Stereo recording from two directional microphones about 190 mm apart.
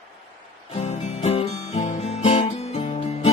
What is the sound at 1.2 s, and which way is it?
Guitar, 35° left (ahead or behind).